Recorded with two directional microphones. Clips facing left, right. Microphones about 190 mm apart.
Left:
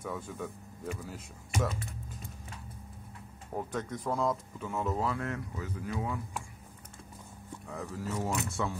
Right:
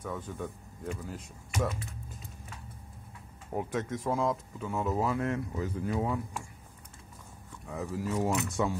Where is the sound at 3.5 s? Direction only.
5° right (ahead or behind).